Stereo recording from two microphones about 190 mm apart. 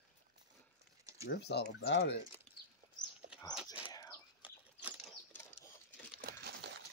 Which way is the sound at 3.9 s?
20° left (ahead or behind).